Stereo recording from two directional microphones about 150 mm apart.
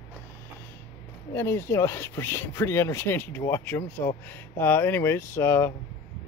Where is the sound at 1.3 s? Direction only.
15° left (ahead or behind).